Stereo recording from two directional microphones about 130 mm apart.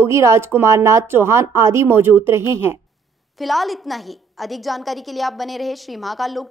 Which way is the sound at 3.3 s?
Centre (ahead or behind).